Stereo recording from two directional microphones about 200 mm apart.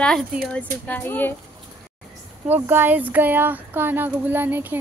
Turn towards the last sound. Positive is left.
turn(degrees=-10)  # may be behind; listen again after turning